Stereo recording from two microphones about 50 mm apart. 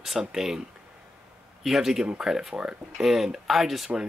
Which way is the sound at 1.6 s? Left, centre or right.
Centre.